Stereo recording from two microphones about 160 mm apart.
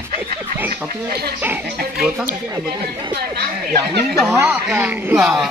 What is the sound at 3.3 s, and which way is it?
Speech, 80° right.